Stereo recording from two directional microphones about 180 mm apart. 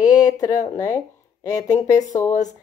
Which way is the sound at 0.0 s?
20° left (ahead or behind).